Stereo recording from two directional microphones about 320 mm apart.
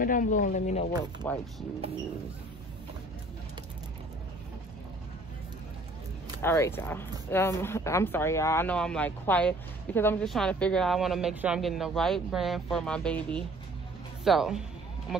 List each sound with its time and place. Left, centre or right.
0.0 s speech: left
1.2 s speech: centre
6.4 s speech: centre